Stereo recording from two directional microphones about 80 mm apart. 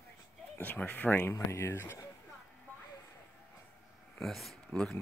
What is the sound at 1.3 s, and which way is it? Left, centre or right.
Speech, left.